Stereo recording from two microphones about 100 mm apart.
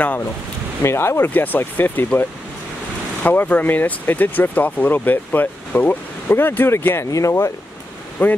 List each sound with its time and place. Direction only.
0.8 s speech: 25° left (ahead or behind)
8.2 s speech: 15° left (ahead or behind)